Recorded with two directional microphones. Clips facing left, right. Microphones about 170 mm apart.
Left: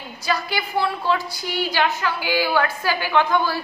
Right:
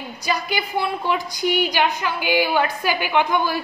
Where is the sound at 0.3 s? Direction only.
15° right (ahead or behind).